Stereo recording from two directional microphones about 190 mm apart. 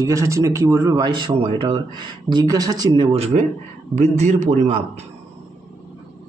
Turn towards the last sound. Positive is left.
turn(degrees=-35)  # may be behind; listen again after turning